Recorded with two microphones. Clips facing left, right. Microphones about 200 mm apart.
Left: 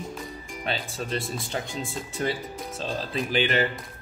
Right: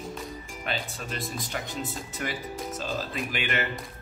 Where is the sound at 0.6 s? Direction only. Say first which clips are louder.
Left 3 dB; 30° left (ahead or behind).